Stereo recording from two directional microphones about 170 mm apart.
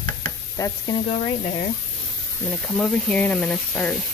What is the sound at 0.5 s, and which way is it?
Speech, 25° left (ahead or behind).